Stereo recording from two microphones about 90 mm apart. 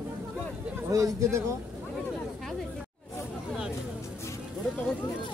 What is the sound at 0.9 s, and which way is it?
Speech, 40° right (ahead or behind).